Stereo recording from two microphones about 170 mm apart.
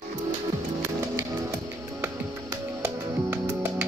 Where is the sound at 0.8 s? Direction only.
15° right (ahead or behind).